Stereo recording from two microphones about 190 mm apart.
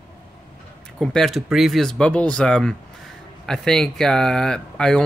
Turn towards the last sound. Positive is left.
turn(degrees=5)  # may be behind; listen again after turning